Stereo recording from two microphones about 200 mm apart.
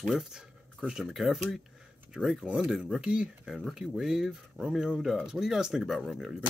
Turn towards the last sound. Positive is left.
turn(degrees=0)  # may be behind; listen again after turning